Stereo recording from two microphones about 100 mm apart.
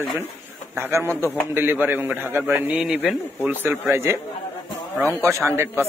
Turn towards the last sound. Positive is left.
turn(degrees=-25)  # may be behind; listen again after turning